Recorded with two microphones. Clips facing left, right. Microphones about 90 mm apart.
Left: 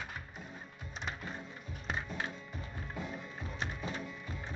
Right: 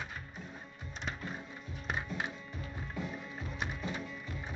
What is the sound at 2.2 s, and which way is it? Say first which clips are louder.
Music: right 1 dB; 15° right (ahead or behind).